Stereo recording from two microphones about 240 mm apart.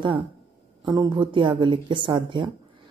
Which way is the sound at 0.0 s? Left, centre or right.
Right.